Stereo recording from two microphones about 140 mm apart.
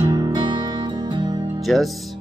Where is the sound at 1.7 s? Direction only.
Centre (ahead or behind).